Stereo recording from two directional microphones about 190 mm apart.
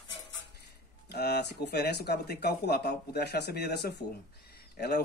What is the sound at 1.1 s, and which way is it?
Speech, 60° left (ahead or behind).